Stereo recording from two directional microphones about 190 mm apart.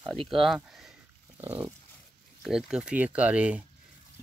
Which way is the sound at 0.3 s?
Centre (ahead or behind).